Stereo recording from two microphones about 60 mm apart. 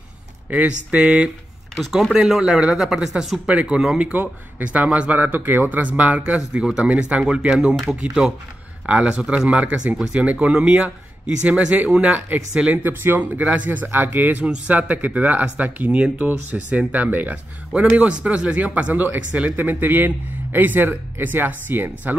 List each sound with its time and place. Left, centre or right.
0.5 s speech: right
1.8 s speech: centre
4.0 s speech: right; by 8.0 s centre
8.8 s speech: right
12.7 s speech: right